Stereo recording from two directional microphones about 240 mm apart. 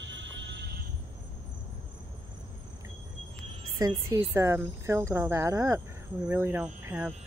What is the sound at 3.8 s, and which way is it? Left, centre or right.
Speech, centre.